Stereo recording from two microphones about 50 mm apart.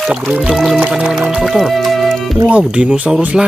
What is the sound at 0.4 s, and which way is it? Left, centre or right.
Music, centre.